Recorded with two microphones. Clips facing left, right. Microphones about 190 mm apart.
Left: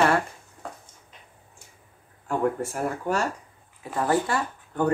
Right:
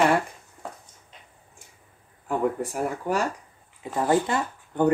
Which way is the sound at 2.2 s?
15° right (ahead or behind).